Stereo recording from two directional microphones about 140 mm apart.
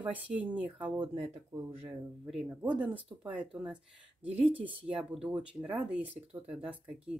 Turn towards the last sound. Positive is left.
turn(degrees=-10)  # may be behind; listen again after turning